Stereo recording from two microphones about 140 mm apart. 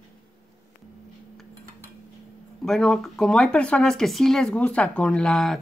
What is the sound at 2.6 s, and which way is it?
Speech, 5° left (ahead or behind).